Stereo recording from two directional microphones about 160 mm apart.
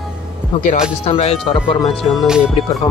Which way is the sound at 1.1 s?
40° left (ahead or behind).